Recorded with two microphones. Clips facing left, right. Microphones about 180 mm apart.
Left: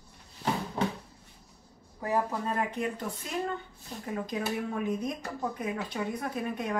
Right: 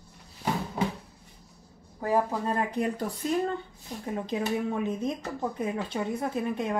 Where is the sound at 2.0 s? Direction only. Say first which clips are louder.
Right 3 dB; 30° right (ahead or behind).